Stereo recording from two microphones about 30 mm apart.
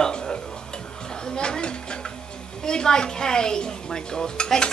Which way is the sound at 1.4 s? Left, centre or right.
Left.